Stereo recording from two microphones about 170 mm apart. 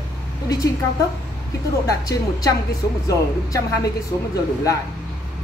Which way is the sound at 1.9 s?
20° left (ahead or behind).